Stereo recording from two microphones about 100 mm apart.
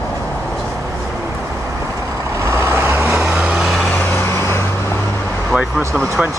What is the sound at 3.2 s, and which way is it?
Vehicle, 10° right (ahead or behind).